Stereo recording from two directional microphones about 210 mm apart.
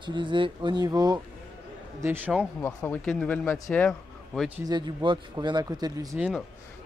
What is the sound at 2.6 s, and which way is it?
Speech, 5° left (ahead or behind).